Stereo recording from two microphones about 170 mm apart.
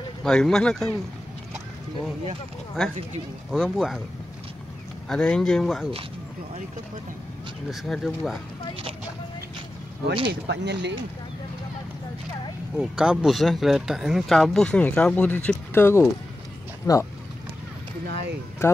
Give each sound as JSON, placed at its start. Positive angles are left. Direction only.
{"t": 0.2, "sound": "speech", "side_deg": 5}
{"t": 3.5, "sound": "speech", "side_deg": 0}
{"t": 5.0, "sound": "speech", "side_deg": 5}
{"t": 7.7, "sound": "speech", "side_deg": 0}
{"t": 10.4, "sound": "speech", "side_deg": -85}
{"t": 12.7, "sound": "speech", "side_deg": -5}
{"t": 18.0, "sound": "speech", "side_deg": -75}
{"t": 18.6, "sound": "speech", "side_deg": 15}